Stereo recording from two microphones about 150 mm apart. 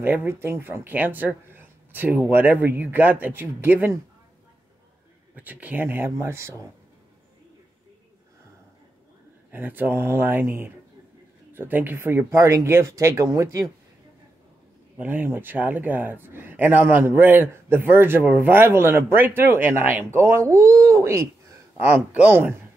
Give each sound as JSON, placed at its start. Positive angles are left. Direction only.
{"t": 0.0, "sound": "speech", "side_deg": -15}
{"t": 5.3, "sound": "speech", "side_deg": -10}
{"t": 9.5, "sound": "speech", "side_deg": -10}
{"t": 11.5, "sound": "speech", "side_deg": -15}
{"t": 15.0, "sound": "speech", "side_deg": -10}
{"t": 21.7, "sound": "speech", "side_deg": -10}